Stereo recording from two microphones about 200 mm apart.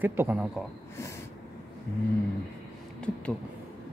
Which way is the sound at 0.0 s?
10° right (ahead or behind).